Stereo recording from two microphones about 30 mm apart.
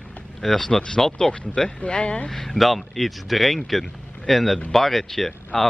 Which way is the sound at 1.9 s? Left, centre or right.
Left.